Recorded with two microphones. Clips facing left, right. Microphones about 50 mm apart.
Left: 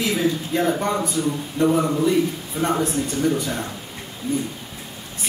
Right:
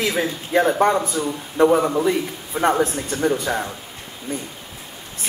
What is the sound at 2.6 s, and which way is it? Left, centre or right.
A man's voice, right.